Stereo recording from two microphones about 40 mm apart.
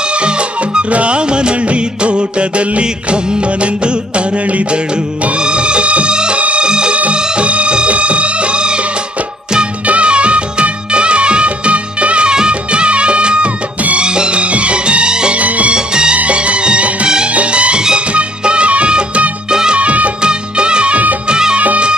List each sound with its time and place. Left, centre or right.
0.1 s music: right
5.4 s music: right
9.8 s music of bollywood: right
13.9 s music: right
15.3 s music: right
15.7 s music: right
16.2 s music: right
19.5 s music: centre
19.8 s music of bollywood: right
20.2 s music: right
21.3 s music of bollywood: centre
21.5 s music of bollywood: right